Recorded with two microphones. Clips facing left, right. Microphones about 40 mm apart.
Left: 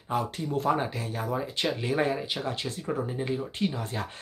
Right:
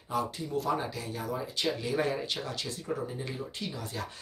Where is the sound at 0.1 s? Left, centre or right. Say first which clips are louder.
Left 3 dB; left.